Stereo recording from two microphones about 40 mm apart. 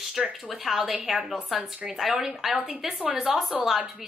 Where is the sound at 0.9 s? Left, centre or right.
Centre.